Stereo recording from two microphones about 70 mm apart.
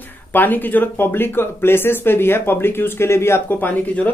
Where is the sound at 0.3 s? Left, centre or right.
Left.